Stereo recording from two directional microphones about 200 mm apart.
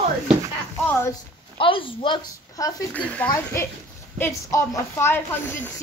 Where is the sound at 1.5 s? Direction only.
25° left (ahead or behind).